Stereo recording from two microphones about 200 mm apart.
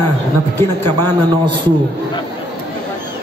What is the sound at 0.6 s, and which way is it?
Music, 10° left (ahead or behind).